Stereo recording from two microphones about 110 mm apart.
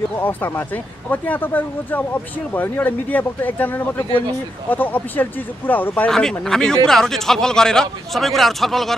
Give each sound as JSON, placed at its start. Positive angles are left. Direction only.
{"t": 0.2, "sound": "speech", "side_deg": 15}
{"t": 6.0, "sound": "speech", "side_deg": 5}